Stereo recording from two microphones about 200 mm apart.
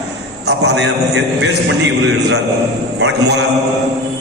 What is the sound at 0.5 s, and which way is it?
A man's voice, 60° right (ahead or behind).